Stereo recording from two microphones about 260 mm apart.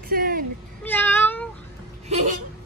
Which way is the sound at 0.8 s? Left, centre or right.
Centre.